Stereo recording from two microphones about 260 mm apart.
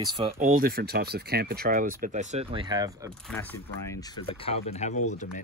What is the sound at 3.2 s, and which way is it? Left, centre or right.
Speech, centre.